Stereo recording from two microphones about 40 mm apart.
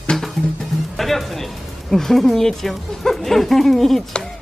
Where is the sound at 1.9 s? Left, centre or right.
Centre.